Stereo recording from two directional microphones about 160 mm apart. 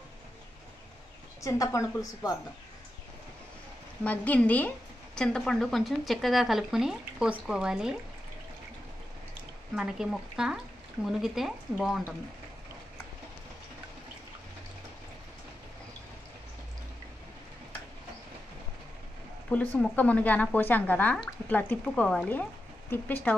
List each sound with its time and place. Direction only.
1.4 s a woman's voice: 20° left (ahead or behind)
4.0 s a woman's voice: 10° left (ahead or behind)
9.8 s a woman's voice: 5° right (ahead or behind)
19.5 s speech: 10° left (ahead or behind)